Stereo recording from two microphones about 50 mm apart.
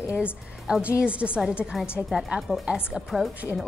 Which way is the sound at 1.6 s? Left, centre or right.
Centre.